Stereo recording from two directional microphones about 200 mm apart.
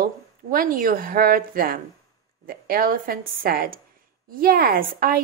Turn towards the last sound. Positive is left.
turn(degrees=-45)  # may be behind; listen again after turning